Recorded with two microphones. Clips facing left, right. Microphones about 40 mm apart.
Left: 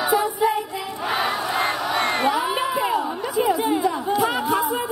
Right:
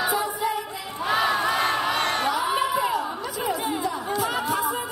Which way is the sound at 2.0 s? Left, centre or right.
Left.